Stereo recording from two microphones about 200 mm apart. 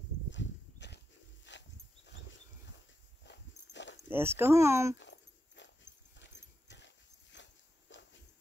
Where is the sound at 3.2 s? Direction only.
60° left (ahead or behind).